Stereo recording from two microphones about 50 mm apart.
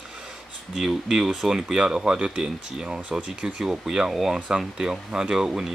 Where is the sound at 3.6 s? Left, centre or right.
Centre.